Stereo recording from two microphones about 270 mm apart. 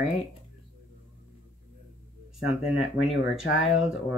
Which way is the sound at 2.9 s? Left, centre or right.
Left.